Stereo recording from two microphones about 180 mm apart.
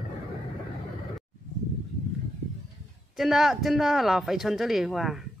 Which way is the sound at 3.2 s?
Centre (ahead or behind).